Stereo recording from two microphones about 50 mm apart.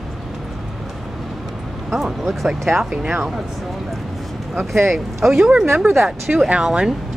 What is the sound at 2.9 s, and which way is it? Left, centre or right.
Speech, centre.